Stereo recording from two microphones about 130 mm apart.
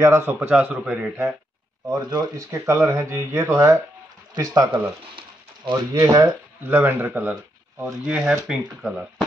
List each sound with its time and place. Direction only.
0.0 s speech: 20° right (ahead or behind)
1.9 s speech: 30° right (ahead or behind)
5.7 s speech: 30° right (ahead or behind)
6.7 s speech: 15° right (ahead or behind)